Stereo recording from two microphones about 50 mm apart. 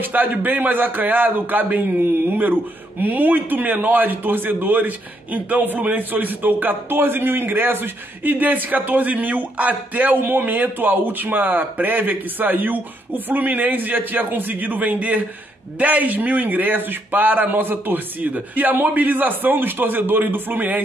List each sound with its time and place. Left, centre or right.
0.0 s speech: right